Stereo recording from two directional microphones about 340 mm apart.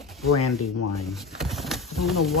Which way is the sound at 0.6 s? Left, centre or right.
Left.